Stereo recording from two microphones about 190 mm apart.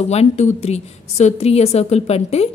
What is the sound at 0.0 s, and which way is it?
A woman's voice, 35° left (ahead or behind).